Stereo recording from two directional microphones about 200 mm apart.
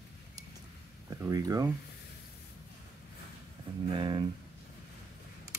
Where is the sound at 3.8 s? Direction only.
25° right (ahead or behind).